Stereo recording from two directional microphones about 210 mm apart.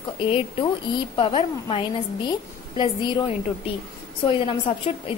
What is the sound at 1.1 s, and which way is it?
A woman's voice, 25° left (ahead or behind).